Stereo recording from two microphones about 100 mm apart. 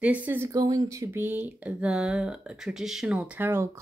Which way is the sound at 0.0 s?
15° right (ahead or behind).